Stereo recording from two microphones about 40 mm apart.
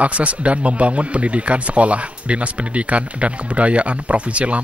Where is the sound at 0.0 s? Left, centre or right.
Right.